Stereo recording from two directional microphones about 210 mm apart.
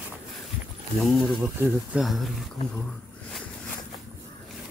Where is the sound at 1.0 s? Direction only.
Centre (ahead or behind).